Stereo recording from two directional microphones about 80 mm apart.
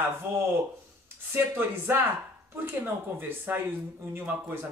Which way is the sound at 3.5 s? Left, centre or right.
Right.